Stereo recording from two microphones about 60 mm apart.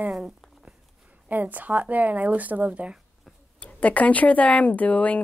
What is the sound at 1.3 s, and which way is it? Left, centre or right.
Speech, right.